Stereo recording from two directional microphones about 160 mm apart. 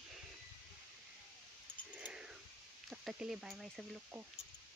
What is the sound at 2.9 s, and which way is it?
Speech, 5° right (ahead or behind).